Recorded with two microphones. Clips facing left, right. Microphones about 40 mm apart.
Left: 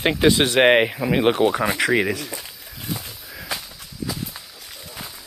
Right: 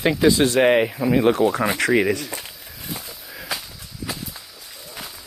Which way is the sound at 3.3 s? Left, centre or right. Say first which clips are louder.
Right 1 dB; centre.